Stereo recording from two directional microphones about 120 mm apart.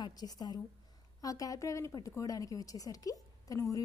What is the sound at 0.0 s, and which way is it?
A woman's voice, 35° left (ahead or behind).